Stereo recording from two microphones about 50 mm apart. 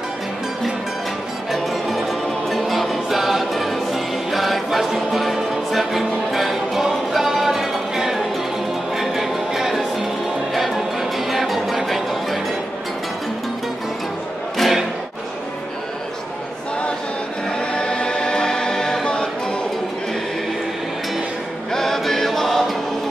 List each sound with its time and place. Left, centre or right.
1.5 s music: centre
14.6 s music: centre
17.6 s choir: centre
21.7 s choir: centre